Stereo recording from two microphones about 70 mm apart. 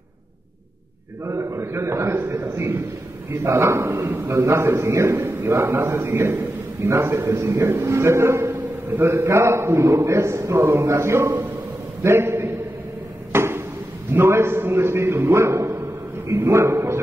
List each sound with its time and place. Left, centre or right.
1.2 s a man's voice: right
12.0 s a sound: right
14.1 s a man's voice: right